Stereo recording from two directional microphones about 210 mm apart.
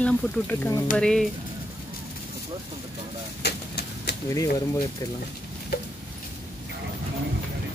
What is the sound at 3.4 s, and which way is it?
Bird, 50° left (ahead or behind).